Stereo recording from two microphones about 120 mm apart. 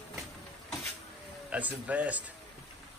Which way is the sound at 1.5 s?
10° right (ahead or behind).